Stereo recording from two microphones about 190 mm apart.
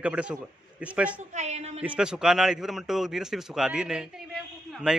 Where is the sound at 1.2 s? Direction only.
40° right (ahead or behind).